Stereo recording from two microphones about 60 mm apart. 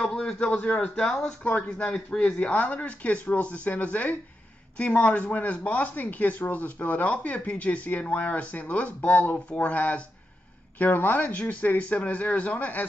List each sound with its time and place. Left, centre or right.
0.0 s a man's voice: centre